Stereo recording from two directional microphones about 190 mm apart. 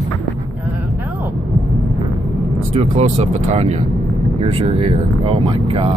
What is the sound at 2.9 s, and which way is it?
Speech, 35° right (ahead or behind).